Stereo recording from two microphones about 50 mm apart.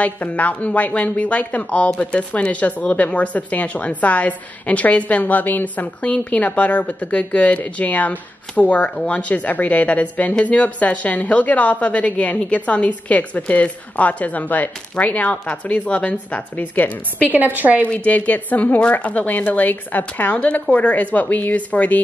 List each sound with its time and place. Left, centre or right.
0.0 s speech: left
6.0 s speech: left
17.3 s a woman's voice: right
17.8 s speech: left